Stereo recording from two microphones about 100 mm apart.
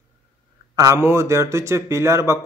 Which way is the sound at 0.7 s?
30° right (ahead or behind).